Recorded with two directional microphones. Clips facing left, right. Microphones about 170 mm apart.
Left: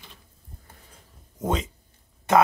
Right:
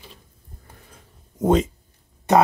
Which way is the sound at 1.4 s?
40° right (ahead or behind).